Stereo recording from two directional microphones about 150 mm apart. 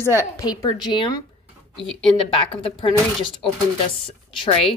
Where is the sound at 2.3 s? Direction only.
35° left (ahead or behind).